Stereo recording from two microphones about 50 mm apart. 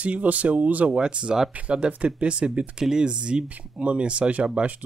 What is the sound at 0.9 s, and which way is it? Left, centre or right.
Speech, centre.